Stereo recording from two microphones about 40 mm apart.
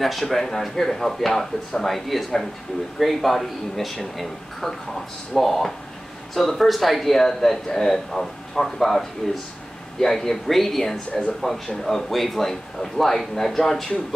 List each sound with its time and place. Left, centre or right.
0.0 s speech: centre